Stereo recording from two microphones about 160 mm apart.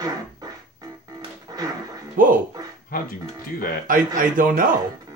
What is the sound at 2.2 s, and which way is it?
Speech, 60° right (ahead or behind).